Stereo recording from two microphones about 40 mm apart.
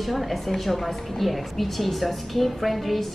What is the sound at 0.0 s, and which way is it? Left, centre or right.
A woman's voice, centre.